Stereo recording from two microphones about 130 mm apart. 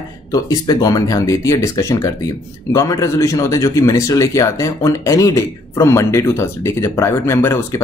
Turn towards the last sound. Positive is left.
turn(degrees=20)  # may be behind; listen again after turning